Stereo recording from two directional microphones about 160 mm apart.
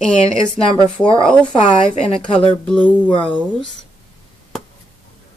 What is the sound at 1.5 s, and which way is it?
A woman's voice, 35° left (ahead or behind).